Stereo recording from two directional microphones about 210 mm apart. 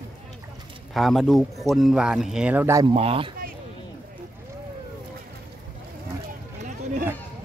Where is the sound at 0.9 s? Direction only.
Centre (ahead or behind).